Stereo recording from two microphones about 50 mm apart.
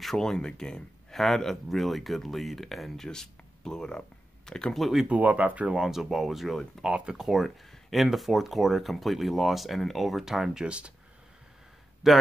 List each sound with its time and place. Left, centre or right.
0.0 s speech: centre
4.7 s speech: centre
5.0 s speech: right
5.7 s speech: centre
12.0 s speech: centre